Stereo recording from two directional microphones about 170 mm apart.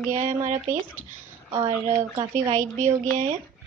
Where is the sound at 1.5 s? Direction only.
20° right (ahead or behind).